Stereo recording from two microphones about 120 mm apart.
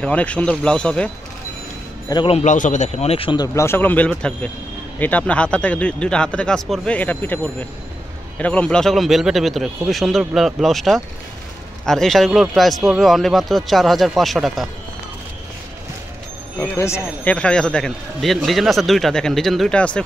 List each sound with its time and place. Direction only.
0.0 s speech: 10° left (ahead or behind)
2.1 s a man's voice: 30° left (ahead or behind)
2.4 s speech: 90° left; by 3.3 s 55° left (ahead or behind)
3.3 s speech: 25° left (ahead or behind)
8.4 s speech: 10° left (ahead or behind)
16.5 s speech: 20° left (ahead or behind)
17.2 s speech: 10° left (ahead or behind)